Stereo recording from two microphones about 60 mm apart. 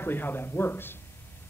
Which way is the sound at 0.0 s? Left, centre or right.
Left.